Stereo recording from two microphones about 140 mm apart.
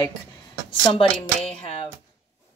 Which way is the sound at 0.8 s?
40° left (ahead or behind).